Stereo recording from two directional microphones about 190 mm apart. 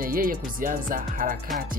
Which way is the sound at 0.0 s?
50° right (ahead or behind).